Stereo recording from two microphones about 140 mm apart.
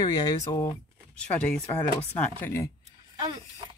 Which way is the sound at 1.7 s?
20° left (ahead or behind).